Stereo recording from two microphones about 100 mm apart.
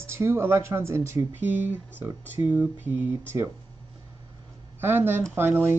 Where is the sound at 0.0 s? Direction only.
25° right (ahead or behind).